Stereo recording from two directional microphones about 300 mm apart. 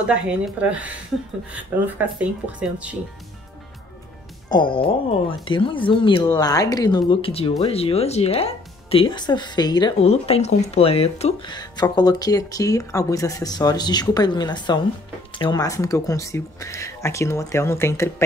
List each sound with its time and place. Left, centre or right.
0.0 s speech: centre
4.5 s speech: centre